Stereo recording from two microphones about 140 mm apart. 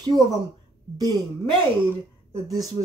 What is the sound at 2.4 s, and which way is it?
Speech, 25° right (ahead or behind).